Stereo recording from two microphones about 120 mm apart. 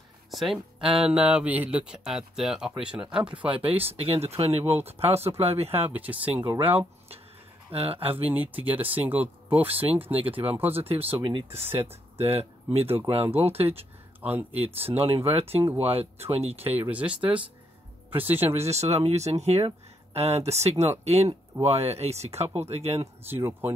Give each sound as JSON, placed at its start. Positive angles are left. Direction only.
{"t": 0.3, "sound": "speech", "side_deg": 0}
{"t": 3.6, "sound": "speech", "side_deg": -50}
{"t": 5.7, "sound": "speech", "side_deg": -15}
{"t": 6.7, "sound": "speech", "side_deg": -55}
{"t": 8.3, "sound": "speech", "side_deg": -15}
{"t": 10.7, "sound": "speech", "side_deg": -55}
{"t": 16.6, "sound": "speech", "side_deg": -15}
{"t": 18.6, "sound": "speech", "side_deg": -65}
{"t": 23.2, "sound": "speech", "side_deg": -20}